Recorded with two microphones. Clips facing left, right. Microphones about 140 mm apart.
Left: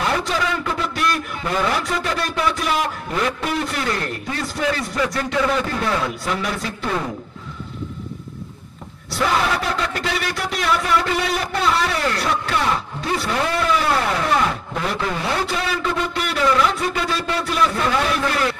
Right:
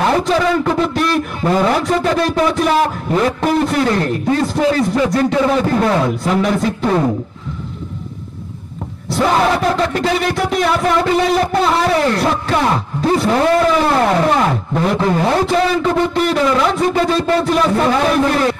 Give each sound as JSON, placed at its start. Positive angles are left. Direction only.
{"t": 0.0, "sound": "a man's voice", "side_deg": -40}
{"t": 9.1, "sound": "a sound", "side_deg": -40}
{"t": 11.0, "sound": "a man's voice", "side_deg": -40}
{"t": 16.7, "sound": "a man's voice", "side_deg": -45}